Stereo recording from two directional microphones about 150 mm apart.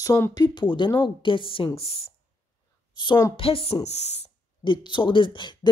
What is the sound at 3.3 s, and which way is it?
Speech, 40° left (ahead or behind).